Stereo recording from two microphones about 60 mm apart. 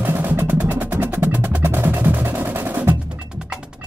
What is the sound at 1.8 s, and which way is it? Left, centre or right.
Music, right.